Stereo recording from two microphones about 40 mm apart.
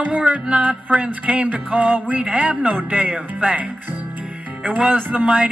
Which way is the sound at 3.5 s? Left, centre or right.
Right.